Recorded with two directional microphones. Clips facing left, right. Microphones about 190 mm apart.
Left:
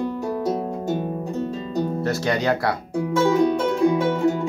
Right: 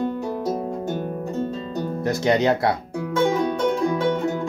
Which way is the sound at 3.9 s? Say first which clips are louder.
Even; 5° left (ahead or behind).